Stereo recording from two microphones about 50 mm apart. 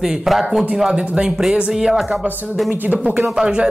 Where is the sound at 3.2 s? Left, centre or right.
Centre.